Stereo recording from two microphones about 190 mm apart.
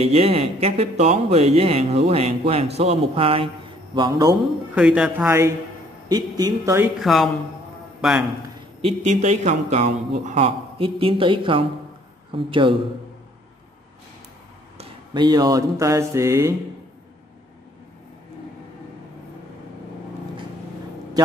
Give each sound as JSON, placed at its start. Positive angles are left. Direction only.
{"t": 0.0, "sound": "a man's voice", "side_deg": -30}
{"t": 4.7, "sound": "a man's voice", "side_deg": -5}
{"t": 7.0, "sound": "speech", "side_deg": 0}
{"t": 8.8, "sound": "a man's voice", "side_deg": -35}
{"t": 14.8, "sound": "a sound", "side_deg": -20}